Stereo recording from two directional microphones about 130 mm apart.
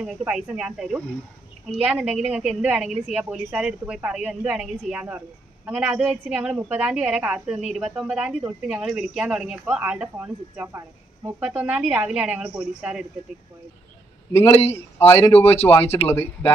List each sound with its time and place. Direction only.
0.0 s a woman's voice: 5° right (ahead or behind); by 11.4 s 25° right (ahead or behind)
11.4 s a woman's voice: 10° right (ahead or behind)
15.0 s a man's voice: 20° left (ahead or behind)
15.4 s speech: 50° left (ahead or behind)
15.7 s a man's voice: 15° left (ahead or behind)